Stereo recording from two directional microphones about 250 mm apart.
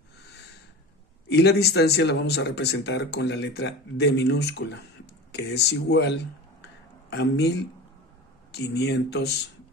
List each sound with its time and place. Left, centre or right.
1.3 s speech: left